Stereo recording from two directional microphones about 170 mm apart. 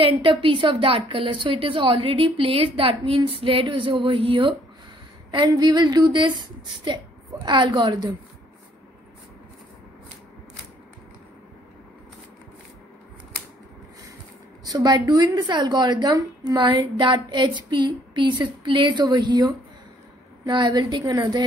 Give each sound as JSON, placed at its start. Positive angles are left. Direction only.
{"t": 0.0, "sound": "a woman's voice", "side_deg": -30}
{"t": 14.6, "sound": "a woman's voice", "side_deg": -25}